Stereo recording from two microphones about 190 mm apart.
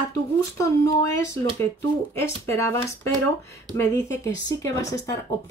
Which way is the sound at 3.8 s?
15° left (ahead or behind).